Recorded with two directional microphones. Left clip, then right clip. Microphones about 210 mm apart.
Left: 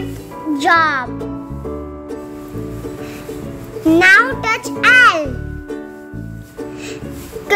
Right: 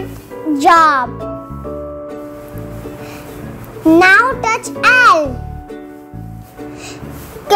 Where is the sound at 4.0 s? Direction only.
Centre (ahead or behind).